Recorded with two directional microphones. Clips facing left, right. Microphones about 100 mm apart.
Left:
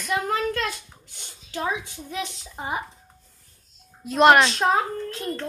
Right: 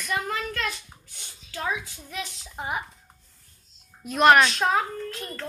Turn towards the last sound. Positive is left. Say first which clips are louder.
# left 5 dB
turn(degrees=25)  # may be behind; listen again after turning